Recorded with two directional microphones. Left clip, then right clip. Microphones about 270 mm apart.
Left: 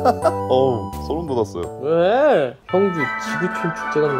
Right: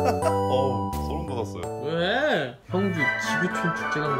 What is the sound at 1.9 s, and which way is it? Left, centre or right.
Speech, centre.